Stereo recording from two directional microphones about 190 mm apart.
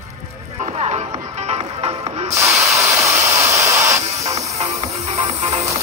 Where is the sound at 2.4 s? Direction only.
15° right (ahead or behind).